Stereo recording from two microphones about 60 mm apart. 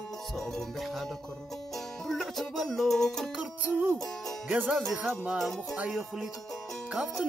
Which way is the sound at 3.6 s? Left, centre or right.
Right.